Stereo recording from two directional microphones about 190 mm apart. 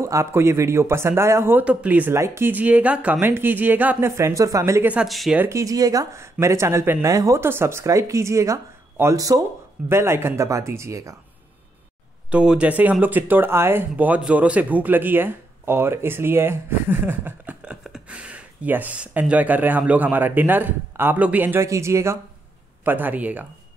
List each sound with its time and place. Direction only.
0.0 s speech: 15° right (ahead or behind)
5.4 s speech: 15° right (ahead or behind)
12.3 s speech: 5° right (ahead or behind)